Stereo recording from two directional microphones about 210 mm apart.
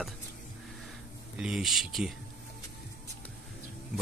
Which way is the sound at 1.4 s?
Centre (ahead or behind).